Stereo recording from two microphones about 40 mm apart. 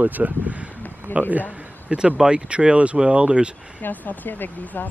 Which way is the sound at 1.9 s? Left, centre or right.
Right.